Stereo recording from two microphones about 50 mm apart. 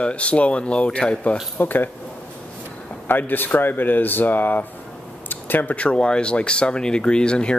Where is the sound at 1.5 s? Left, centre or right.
Left.